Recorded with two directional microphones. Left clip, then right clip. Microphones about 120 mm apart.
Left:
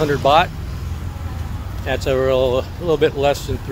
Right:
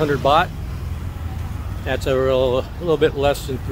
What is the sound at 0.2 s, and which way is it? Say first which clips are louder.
Speech: left 3 dB; 15° right (ahead or behind).